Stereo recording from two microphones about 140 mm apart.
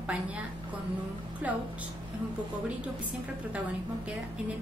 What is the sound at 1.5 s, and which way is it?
Speech, 10° right (ahead or behind).